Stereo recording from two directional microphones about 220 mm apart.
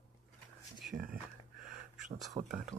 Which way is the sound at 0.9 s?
40° right (ahead or behind).